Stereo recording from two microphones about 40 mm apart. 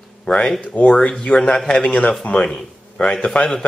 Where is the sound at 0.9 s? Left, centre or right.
Left.